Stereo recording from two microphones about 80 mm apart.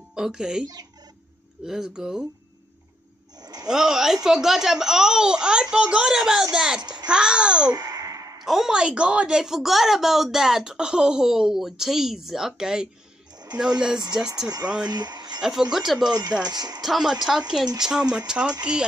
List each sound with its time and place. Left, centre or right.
0.1 s speech: centre
3.3 s a sound: right
3.6 s speech: centre
6.8 s child singing: right
7.1 s speech: centre
7.7 s sigh: right
8.5 s a woman's voice: centre
14.9 s speech: right
15.4 s a woman's voice: centre
16.1 s speech: right
16.8 s speech: centre